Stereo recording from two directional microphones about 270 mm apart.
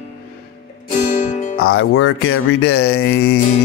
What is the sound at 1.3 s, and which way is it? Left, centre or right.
Music, left.